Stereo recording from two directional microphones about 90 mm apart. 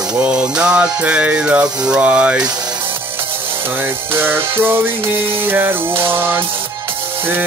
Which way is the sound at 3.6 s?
25° right (ahead or behind).